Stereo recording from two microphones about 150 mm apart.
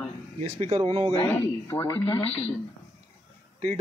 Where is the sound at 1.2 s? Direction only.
15° left (ahead or behind).